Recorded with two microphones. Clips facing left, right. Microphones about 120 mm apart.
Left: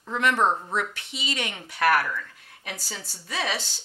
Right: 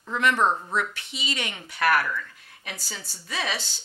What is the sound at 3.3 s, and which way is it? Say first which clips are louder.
Speech: left 1 dB; 50° left (ahead or behind).